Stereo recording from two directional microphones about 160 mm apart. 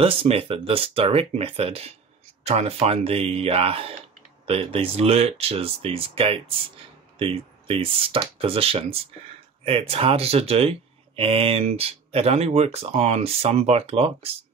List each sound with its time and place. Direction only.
0.0 s speech: 35° right (ahead or behind)